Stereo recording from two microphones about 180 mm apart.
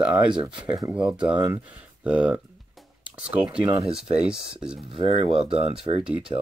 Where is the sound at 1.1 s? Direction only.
5° right (ahead or behind).